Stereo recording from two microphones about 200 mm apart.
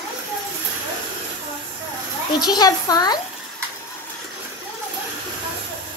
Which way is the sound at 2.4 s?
20° left (ahead or behind).